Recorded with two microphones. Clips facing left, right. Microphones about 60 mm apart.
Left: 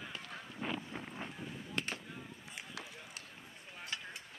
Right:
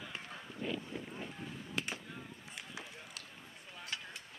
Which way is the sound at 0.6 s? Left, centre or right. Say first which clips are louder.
Right 1 dB; left.